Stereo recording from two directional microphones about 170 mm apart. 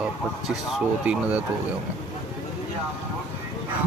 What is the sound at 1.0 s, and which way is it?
Speech, 5° right (ahead or behind).